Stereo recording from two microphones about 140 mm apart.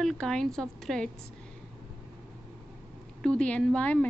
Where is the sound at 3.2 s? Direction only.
5° left (ahead or behind).